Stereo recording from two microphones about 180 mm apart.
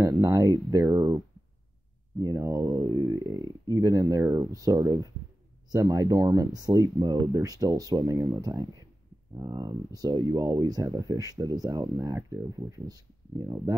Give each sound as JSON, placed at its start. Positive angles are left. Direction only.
{"t": 0.0, "sound": "speech", "side_deg": -20}